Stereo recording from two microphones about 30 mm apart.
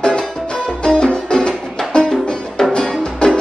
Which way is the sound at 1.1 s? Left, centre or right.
Left.